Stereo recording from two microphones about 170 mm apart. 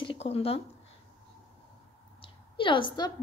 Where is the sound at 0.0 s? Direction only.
35° left (ahead or behind).